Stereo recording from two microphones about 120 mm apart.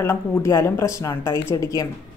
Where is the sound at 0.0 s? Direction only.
20° left (ahead or behind).